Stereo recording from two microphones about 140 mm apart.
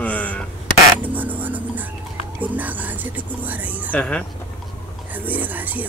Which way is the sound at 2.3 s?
10° right (ahead or behind).